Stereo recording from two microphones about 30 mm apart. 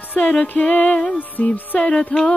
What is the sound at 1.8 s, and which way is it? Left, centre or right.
Music, left.